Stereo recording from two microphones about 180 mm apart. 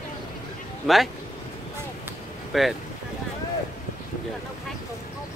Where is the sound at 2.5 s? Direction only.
Centre (ahead or behind).